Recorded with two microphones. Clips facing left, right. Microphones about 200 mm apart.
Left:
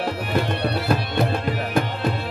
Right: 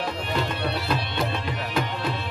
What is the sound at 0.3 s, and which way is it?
Music, 50° left (ahead or behind).